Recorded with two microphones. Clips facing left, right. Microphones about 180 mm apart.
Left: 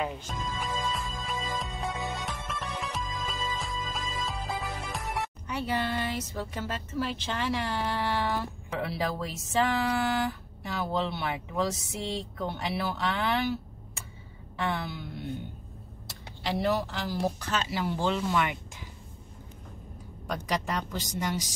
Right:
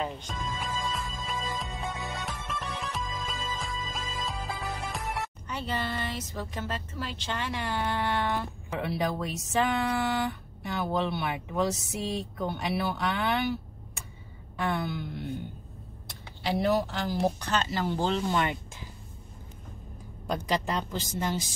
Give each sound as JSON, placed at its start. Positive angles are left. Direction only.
{"t": 0.0, "sound": "music", "side_deg": 5}
{"t": 5.5, "sound": "speech", "side_deg": 10}
{"t": 14.6, "sound": "speech", "side_deg": 0}
{"t": 16.1, "sound": "speech", "side_deg": 0}
{"t": 17.9, "sound": "speech", "side_deg": -35}
{"t": 20.2, "sound": "speech", "side_deg": -30}